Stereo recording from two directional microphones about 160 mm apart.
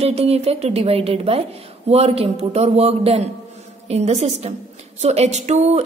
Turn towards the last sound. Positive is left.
turn(degrees=-45)  # may be behind; listen again after turning